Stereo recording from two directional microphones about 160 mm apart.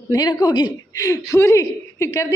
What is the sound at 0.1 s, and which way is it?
A woman's voice, 25° left (ahead or behind).